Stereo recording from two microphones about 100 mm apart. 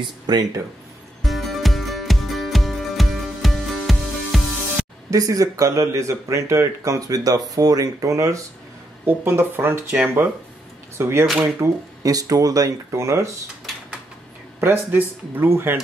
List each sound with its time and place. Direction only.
0.0 s speech: 45° right (ahead or behind)
1.2 s music: centre (ahead or behind)
5.1 s speech: 35° right (ahead or behind)
9.0 s speech: 20° right (ahead or behind)
14.6 s speech: 20° right (ahead or behind)